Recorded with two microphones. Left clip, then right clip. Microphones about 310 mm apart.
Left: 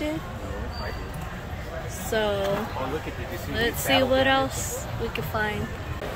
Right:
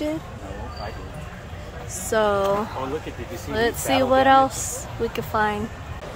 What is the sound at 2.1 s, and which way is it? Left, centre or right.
Speech, centre.